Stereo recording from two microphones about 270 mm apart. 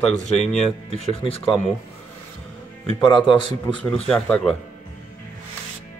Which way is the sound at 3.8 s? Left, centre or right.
Centre.